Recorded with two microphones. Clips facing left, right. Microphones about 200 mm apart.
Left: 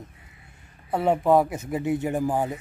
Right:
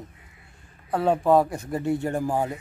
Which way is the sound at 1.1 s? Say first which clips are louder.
Even; 15° left (ahead or behind).